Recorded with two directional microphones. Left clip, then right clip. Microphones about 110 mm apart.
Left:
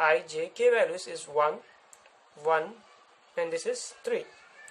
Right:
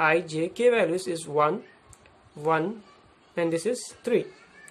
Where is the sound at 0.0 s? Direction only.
25° right (ahead or behind).